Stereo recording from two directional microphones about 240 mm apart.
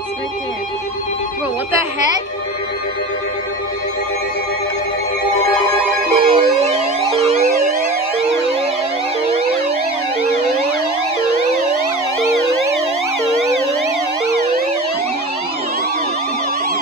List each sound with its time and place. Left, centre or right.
6.1 s music: right